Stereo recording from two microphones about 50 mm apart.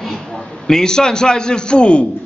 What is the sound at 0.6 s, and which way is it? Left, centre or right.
A man's voice, centre.